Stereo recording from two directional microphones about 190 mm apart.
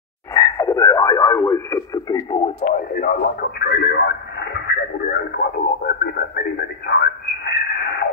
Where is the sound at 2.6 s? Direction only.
50° left (ahead or behind); by 4.7 s 65° left (ahead or behind).